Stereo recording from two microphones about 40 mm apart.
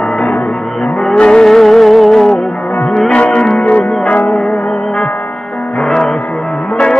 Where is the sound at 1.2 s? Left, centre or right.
Left.